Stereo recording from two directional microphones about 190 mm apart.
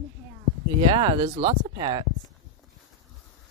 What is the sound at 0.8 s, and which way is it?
Speech, 25° right (ahead or behind).